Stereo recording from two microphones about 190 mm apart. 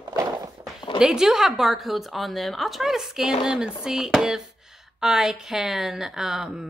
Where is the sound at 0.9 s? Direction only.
5° right (ahead or behind).